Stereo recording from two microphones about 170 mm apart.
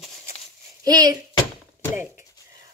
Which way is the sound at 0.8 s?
20° right (ahead or behind).